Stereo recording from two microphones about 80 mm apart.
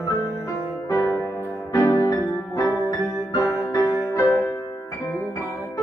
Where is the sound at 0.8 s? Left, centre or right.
Left.